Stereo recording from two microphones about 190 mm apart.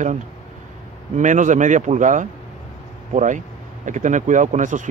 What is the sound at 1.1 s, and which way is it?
Speech, 40° right (ahead or behind).